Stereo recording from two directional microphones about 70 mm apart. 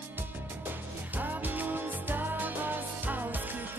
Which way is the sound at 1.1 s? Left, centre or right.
Right.